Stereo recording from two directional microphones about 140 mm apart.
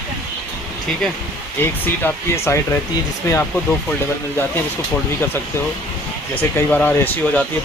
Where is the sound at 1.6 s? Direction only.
15° left (ahead or behind).